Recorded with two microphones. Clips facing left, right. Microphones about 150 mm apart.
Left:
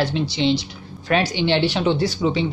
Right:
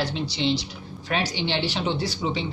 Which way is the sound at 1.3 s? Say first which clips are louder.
Left 7 dB; 60° left (ahead or behind).